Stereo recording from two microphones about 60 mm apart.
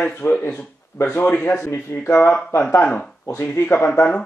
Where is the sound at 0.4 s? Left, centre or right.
Left.